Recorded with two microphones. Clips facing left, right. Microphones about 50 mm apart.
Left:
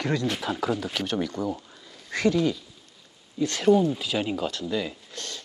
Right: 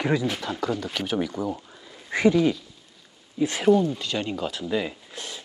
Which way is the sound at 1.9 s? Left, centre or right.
Centre.